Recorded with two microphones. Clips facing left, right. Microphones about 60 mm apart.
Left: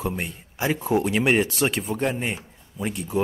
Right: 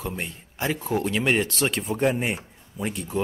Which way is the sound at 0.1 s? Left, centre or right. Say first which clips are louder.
Left 2 dB; centre.